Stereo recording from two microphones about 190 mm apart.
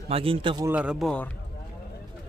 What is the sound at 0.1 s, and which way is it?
Speech, 30° right (ahead or behind).